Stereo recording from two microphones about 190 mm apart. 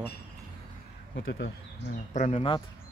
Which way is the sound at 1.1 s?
80° left.